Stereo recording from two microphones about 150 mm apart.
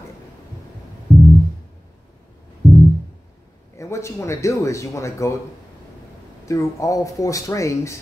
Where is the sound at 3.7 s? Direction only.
20° left (ahead or behind).